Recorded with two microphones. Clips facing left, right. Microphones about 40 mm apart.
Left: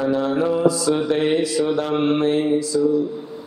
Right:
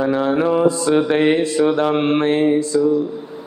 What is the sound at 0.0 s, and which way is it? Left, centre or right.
Mantra, right.